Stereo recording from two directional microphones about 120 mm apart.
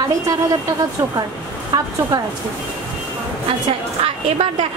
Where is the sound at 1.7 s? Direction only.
30° right (ahead or behind).